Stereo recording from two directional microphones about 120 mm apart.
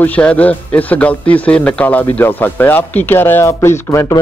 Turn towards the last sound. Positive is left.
turn(degrees=20)  # may be behind; listen again after turning